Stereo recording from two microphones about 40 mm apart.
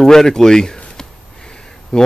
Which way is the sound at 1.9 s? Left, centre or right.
Centre.